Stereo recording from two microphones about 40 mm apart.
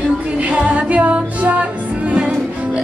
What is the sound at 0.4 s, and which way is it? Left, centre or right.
Music, right.